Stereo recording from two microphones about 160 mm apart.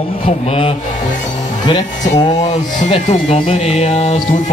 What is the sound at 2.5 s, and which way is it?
Music, 45° left (ahead or behind).